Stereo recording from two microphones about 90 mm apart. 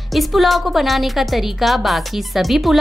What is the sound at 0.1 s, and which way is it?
A woman's voice, centre (ahead or behind).